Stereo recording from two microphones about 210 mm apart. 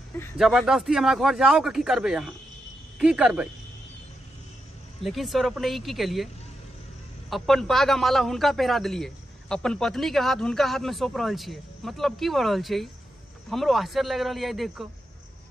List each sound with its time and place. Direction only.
0.4 s a man's voice: centre (ahead or behind)
5.0 s a man's voice: centre (ahead or behind)
7.2 s a man's voice: centre (ahead or behind)